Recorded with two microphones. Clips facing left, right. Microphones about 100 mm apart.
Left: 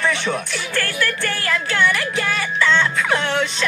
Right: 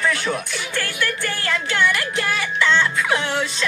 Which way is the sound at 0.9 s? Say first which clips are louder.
Left 2 dB; 25° right (ahead or behind).